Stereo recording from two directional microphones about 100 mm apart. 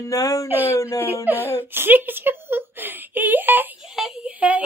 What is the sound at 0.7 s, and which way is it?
Speech, 30° left (ahead or behind).